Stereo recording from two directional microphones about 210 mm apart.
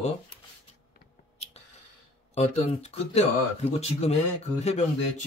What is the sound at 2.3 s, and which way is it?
Speech, 30° left (ahead or behind).